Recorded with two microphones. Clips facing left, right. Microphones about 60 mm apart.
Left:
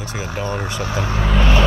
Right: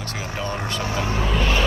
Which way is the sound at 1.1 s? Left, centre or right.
Left.